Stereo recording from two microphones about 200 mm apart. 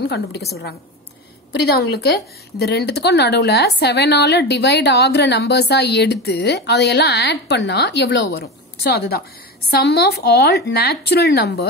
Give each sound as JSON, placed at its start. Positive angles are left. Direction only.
{"t": 0.0, "sound": "a woman's voice", "side_deg": 55}
{"t": 1.8, "sound": "a woman's voice", "side_deg": 55}